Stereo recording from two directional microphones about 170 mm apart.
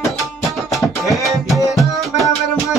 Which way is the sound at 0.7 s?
Centre (ahead or behind).